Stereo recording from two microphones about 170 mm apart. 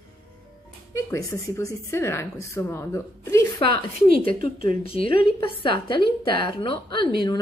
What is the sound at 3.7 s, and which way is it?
A woman's voice, 30° left (ahead or behind).